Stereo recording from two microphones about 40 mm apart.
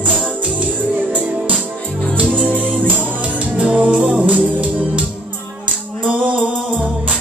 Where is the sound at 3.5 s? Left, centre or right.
Right.